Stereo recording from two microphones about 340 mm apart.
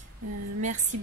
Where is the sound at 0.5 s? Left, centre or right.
Right.